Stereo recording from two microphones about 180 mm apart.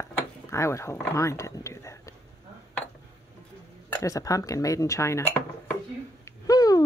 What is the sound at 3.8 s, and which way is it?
Speech, 15° left (ahead or behind).